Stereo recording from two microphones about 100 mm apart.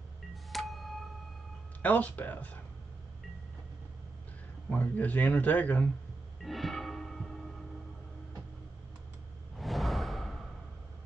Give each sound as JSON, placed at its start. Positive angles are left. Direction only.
{"t": 0.5, "sound": "music", "side_deg": 0}
{"t": 1.8, "sound": "speech", "side_deg": 15}
{"t": 4.6, "sound": "speech", "side_deg": 15}
{"t": 6.4, "sound": "music", "side_deg": 0}
{"t": 9.6, "sound": "whoosh", "side_deg": 0}